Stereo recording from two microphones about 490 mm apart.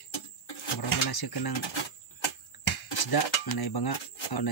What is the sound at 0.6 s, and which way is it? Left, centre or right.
Pigeon, left.